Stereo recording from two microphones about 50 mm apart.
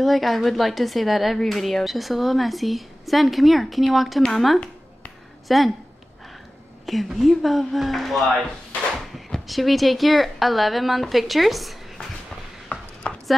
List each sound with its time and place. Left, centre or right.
0.0 s a woman's voice: centre
6.9 s a woman's voice: centre
12.6 s chopping: left